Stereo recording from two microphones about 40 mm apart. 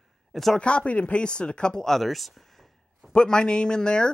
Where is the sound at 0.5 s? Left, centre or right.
Left.